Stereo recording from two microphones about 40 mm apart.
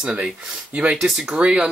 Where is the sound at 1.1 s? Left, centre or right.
Centre.